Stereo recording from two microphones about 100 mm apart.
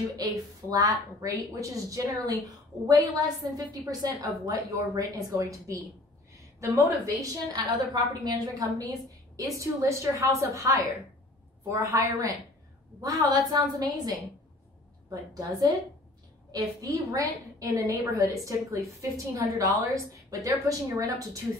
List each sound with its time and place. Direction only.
0.7 s a woman's voice: 40° right (ahead or behind)